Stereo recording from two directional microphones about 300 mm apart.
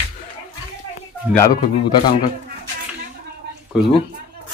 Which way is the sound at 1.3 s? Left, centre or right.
Centre.